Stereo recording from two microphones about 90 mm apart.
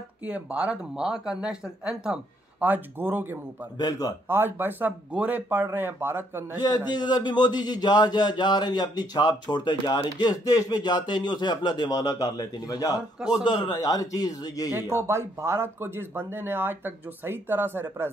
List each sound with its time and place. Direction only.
0.2 s speech: 15° right (ahead or behind)
2.6 s speech: 20° right (ahead or behind)
3.7 s a man's voice: 50° left (ahead or behind)
4.3 s speech: 25° right (ahead or behind)
6.9 s a man's voice: 50° left (ahead or behind)
11.9 s speech: 45° left (ahead or behind)
13.3 s a man's voice: 50° left (ahead or behind)
14.7 s speech: 25° right (ahead or behind)